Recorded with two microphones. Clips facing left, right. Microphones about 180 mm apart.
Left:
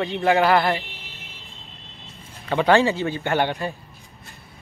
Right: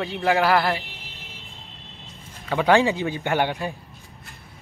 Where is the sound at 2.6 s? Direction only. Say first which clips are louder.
Left 1 dB; 15° right (ahead or behind).